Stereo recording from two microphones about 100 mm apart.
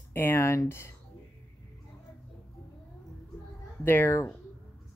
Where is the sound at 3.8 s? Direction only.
20° left (ahead or behind).